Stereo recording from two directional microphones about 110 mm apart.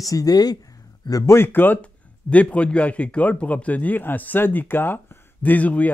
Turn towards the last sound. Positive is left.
turn(degrees=15)  # may be behind; listen again after turning